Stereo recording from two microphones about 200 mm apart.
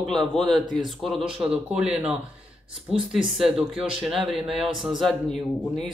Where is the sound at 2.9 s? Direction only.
25° right (ahead or behind).